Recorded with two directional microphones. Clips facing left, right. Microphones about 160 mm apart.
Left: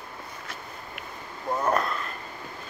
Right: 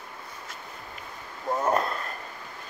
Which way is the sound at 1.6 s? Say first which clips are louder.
Even; 30° right (ahead or behind).